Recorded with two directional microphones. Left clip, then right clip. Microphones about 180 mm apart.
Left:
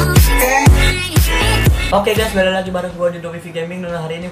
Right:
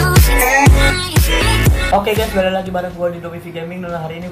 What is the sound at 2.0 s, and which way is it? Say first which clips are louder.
Speech: left 1 dB; centre (ahead or behind).